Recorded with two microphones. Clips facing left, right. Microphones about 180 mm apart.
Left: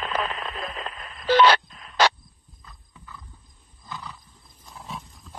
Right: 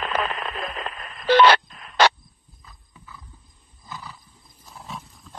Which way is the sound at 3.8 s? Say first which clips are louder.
Left 1 dB; 5° right (ahead or behind).